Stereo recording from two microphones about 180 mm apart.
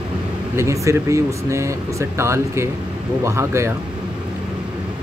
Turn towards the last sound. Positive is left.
turn(degrees=-15)  # may be behind; listen again after turning